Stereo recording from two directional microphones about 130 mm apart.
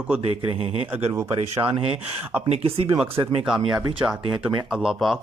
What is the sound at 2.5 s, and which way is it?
Speech, 50° right (ahead or behind).